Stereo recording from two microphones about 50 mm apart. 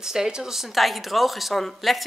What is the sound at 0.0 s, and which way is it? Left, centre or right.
Speech, centre.